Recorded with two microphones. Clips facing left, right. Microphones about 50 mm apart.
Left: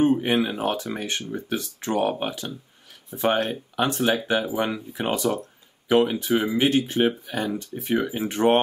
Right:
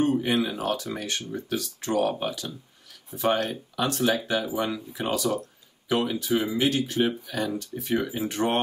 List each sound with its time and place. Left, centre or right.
0.0 s speech: left